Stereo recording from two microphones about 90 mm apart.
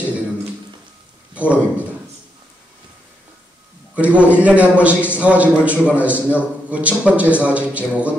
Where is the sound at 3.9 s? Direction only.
15° right (ahead or behind).